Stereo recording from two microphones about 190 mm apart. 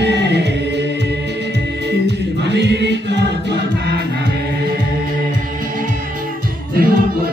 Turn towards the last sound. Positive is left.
turn(degrees=-50)  # may be behind; listen again after turning